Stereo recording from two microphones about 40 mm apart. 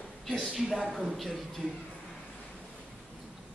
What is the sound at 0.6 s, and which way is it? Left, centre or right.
A man's voice, centre.